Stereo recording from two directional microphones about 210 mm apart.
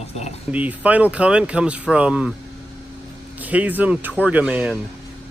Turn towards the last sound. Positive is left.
turn(degrees=-5)  # may be behind; listen again after turning